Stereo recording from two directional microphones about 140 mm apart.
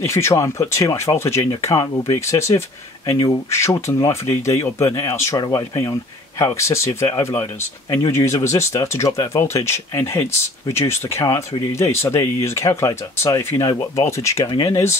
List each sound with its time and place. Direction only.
0.0 s speech: 20° left (ahead or behind)
8.1 s speech: 25° left (ahead or behind)